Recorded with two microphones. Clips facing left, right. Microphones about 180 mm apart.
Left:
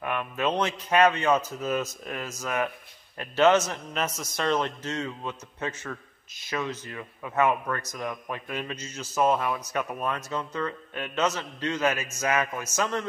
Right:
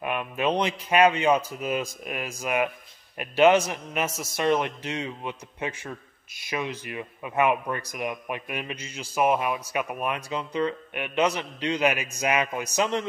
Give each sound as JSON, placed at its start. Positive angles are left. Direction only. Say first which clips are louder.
{"t": 0.0, "sound": "a man's voice", "louder": "right 1 dB", "side_deg": -15}